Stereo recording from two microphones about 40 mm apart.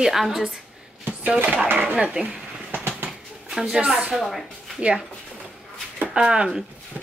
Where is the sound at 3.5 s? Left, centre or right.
Centre.